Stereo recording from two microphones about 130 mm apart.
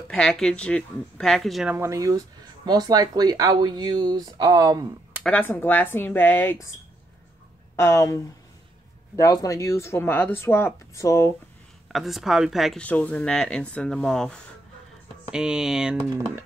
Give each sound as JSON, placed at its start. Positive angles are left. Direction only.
{"t": 0.1, "sound": "speech", "side_deg": 5}
{"t": 1.7, "sound": "speech", "side_deg": -20}
{"t": 5.2, "sound": "speech", "side_deg": 10}
{"t": 7.7, "sound": "speech", "side_deg": 20}
{"t": 11.9, "sound": "speech", "side_deg": 0}
{"t": 12.8, "sound": "speech", "side_deg": 10}
{"t": 15.3, "sound": "speech", "side_deg": -5}